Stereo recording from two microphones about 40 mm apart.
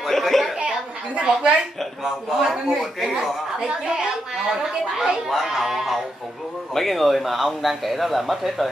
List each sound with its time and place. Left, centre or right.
0.0 s a sound: centre
0.6 s a sound: right
1.8 s a man's voice: centre
4.5 s chatter: centre
5.4 s music: centre
6.7 s a man's voice: centre